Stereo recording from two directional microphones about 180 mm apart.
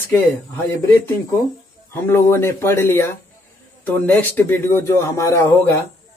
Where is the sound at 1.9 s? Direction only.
15° left (ahead or behind).